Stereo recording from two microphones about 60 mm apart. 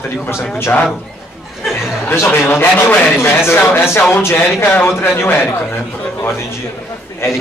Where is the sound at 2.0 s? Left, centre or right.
Left.